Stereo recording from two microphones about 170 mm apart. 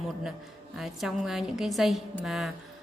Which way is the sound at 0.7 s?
Centre (ahead or behind).